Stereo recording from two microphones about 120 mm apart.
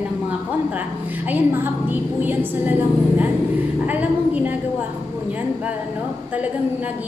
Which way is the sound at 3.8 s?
15° right (ahead or behind).